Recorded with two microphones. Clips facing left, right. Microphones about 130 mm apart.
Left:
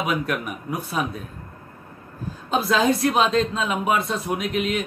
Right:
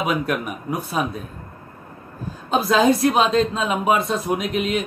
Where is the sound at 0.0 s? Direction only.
25° right (ahead or behind).